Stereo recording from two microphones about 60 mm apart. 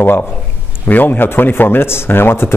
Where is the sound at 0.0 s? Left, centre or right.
Left.